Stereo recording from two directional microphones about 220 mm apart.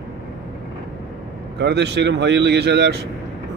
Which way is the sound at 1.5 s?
50° right (ahead or behind).